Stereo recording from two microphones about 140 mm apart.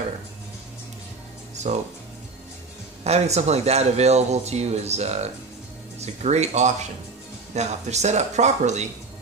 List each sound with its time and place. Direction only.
1.6 s speech: 55° right (ahead or behind)
3.0 s speech: 50° right (ahead or behind)